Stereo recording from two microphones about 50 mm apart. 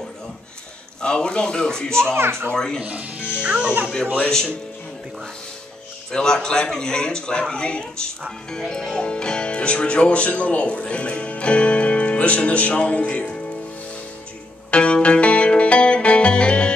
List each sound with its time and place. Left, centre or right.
1.0 s speech: centre
2.1 s a child's voice: right
2.5 s speech: centre
2.8 s speech: right
4.3 s speech: centre
6.1 s speech: centre
14.7 s music: left